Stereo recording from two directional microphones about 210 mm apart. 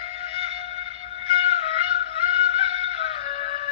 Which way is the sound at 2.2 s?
30° left (ahead or behind).